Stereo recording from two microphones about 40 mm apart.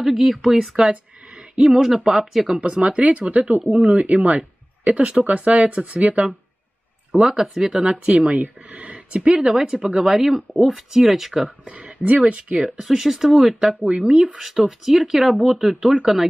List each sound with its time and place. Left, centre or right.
0.0 s speech: centre
2.8 s speech: right
7.2 s speech: centre
7.8 s speech: right
9.5 s speech: centre
11.7 s speech: right
12.5 s speech: centre
13.8 s speech: right
14.3 s speech: centre